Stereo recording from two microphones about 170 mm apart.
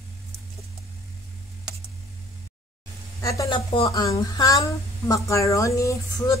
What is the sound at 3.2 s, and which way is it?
Speech, 20° left (ahead or behind).